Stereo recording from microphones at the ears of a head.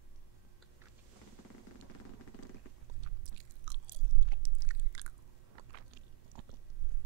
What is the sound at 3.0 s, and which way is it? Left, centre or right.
Chewing, right.